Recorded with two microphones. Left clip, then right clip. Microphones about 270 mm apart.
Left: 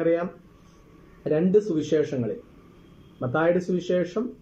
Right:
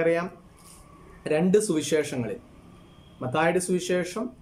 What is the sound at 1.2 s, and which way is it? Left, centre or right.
Speech, centre.